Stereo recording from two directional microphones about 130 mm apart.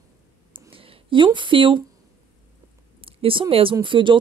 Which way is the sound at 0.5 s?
45° right (ahead or behind).